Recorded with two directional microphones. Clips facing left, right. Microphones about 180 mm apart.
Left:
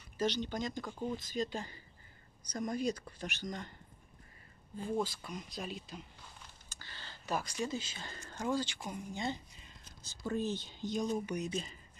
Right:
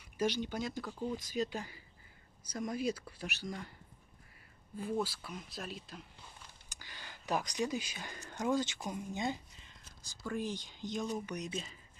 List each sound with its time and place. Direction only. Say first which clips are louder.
0.2 s speech: even; 10° right (ahead or behind)
5.0 s speech: left 1 dB; 5° right (ahead or behind)
6.7 s speech: even; 15° right (ahead or behind)
10.0 s speech: left 2 dB; 25° left (ahead or behind)
10.4 s speech: left 3 dB; 15° right (ahead or behind)
11.0 s speech: left 3 dB; 15° left (ahead or behind)